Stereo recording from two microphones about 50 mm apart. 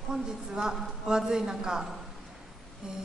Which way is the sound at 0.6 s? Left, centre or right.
Centre.